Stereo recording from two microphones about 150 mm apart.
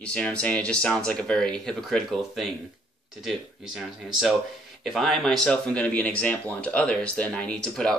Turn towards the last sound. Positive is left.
turn(degrees=5)  # may be behind; listen again after turning